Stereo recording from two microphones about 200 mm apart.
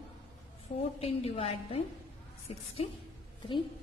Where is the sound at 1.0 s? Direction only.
30° left (ahead or behind).